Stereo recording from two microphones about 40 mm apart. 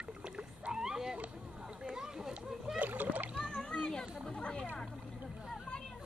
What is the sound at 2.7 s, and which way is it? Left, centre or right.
Splash, right.